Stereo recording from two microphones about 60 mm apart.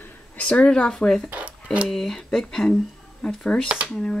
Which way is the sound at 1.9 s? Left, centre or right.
Centre.